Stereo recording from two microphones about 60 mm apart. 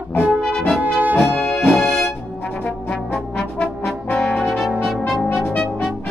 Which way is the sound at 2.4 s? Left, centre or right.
Left.